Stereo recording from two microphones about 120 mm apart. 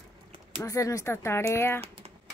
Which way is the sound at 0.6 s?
25° left (ahead or behind).